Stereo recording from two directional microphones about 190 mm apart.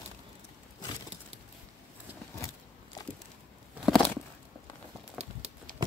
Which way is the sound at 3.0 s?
20° left (ahead or behind).